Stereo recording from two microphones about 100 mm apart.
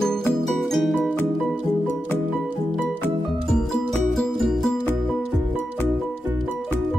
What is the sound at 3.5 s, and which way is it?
Music, 5° left (ahead or behind).